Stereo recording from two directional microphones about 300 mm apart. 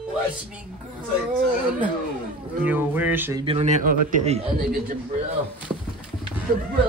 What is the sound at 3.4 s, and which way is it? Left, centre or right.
A man's voice, right.